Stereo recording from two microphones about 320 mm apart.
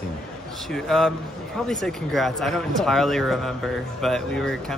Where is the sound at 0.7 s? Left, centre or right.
Centre.